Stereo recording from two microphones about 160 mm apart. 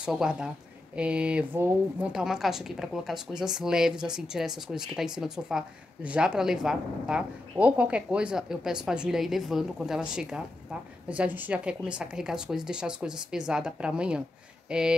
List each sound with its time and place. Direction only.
0.0 s a woman's voice: 5° right (ahead or behind)